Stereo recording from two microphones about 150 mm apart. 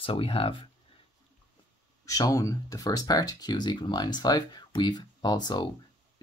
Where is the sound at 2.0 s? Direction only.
20° left (ahead or behind).